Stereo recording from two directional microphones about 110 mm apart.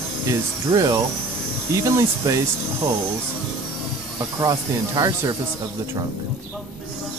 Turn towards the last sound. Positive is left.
turn(degrees=-40)  # may be behind; listen again after turning